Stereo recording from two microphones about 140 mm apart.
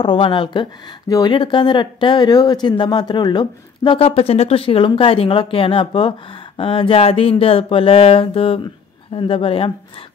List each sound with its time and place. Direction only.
0.0 s speech: 35° left (ahead or behind)
1.0 s speech: 25° left (ahead or behind)
1.3 s speech: 35° left (ahead or behind)